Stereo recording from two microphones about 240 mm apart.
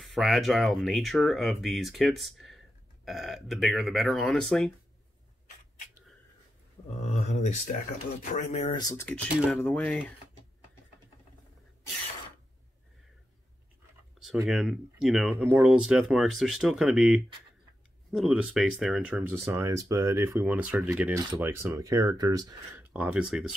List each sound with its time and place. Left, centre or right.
0.0 s speech: centre
6.9 s speech: left; by 10.1 s centre
14.2 s speech: centre